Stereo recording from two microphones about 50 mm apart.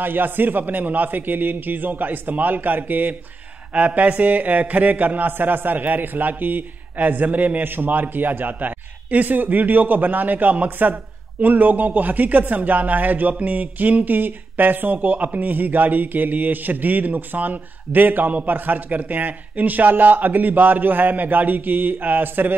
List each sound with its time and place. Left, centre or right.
0.0 s a man's voice: right